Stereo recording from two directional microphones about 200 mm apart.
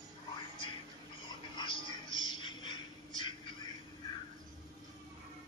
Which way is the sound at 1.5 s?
25° left (ahead or behind).